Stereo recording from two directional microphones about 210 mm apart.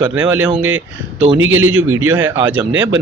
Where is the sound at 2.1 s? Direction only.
10° right (ahead or behind).